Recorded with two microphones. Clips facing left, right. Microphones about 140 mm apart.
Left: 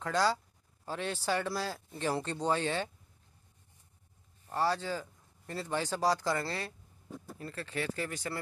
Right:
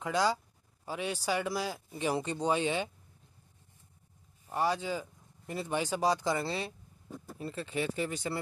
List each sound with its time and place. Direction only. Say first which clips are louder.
0.0 s speech: even; 15° right (ahead or behind)
4.5 s speech: right 1 dB; 15° right (ahead or behind)